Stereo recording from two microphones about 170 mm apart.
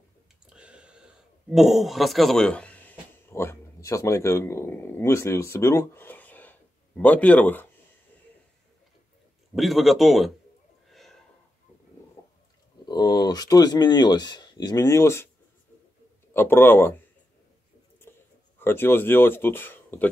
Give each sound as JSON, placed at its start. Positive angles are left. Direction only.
{"t": 0.5, "sound": "a man's voice", "side_deg": -5}
{"t": 9.6, "sound": "a man's voice", "side_deg": 0}
{"t": 10.9, "sound": "a sound", "side_deg": 0}
{"t": 12.8, "sound": "speech", "side_deg": 25}
{"t": 16.3, "sound": "speech", "side_deg": 10}
{"t": 18.1, "sound": "a sound", "side_deg": 15}
{"t": 18.6, "sound": "speech", "side_deg": 10}